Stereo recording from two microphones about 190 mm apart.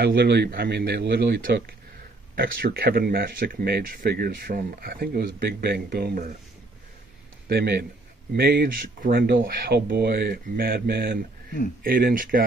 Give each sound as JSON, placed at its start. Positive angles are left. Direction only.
{"t": 0.0, "sound": "speech", "side_deg": -55}
{"t": 7.4, "sound": "speech", "side_deg": -60}
{"t": 11.8, "sound": "speech", "side_deg": -50}